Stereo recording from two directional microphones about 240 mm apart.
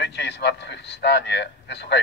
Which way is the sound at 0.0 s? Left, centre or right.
Left.